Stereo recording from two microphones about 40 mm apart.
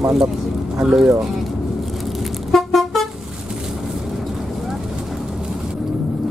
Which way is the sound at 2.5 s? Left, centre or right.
Centre.